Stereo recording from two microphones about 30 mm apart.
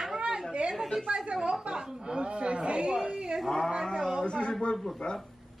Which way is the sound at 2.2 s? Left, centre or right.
Right.